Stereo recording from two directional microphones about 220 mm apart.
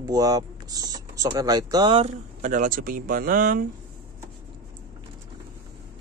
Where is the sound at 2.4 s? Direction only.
35° right (ahead or behind).